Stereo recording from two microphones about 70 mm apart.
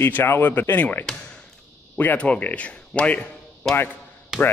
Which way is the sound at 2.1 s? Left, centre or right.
Centre.